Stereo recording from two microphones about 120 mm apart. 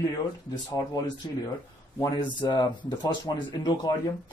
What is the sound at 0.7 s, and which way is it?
Speech, 35° left (ahead or behind).